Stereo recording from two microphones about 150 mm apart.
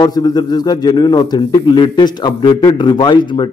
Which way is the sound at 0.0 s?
30° left (ahead or behind).